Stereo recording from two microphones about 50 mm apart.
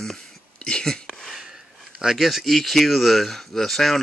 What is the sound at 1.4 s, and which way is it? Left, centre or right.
Speech, centre.